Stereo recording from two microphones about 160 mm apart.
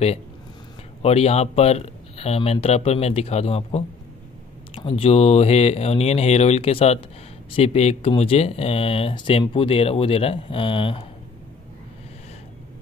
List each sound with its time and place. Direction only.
1.0 s speech: 40° left (ahead or behind)